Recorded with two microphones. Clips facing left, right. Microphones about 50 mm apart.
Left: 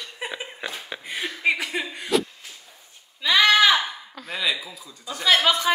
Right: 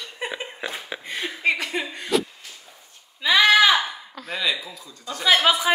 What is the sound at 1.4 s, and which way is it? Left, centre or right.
Chuckle, centre.